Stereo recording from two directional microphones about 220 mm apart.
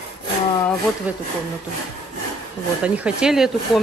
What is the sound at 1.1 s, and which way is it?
Speech, 5° right (ahead or behind).